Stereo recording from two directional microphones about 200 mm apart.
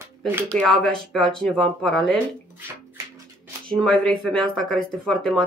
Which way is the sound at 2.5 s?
10° right (ahead or behind).